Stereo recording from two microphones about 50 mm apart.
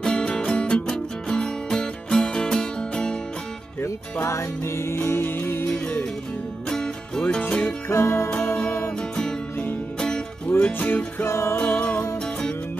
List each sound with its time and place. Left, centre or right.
0.0 s music: centre
3.8 s music: left
4.8 s music: left
6.7 s music: centre
7.9 s music: left
9.9 s music: centre
10.6 s music: left
11.2 s music: left
11.5 s music: left